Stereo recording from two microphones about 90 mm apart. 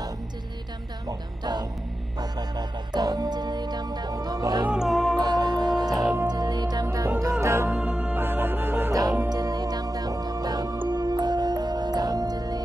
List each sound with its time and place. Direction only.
1.0 s music: 50° right (ahead or behind)
4.8 s music: centre (ahead or behind)
5.2 s music: 50° right (ahead or behind); by 7.7 s 30° right (ahead or behind)
7.7 s music: 5° right (ahead or behind)
8.1 s music: 25° right (ahead or behind)
8.9 s music: 40° right (ahead or behind)